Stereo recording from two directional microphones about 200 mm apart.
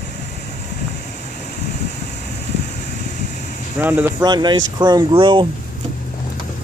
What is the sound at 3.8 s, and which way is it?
Speech, 10° right (ahead or behind).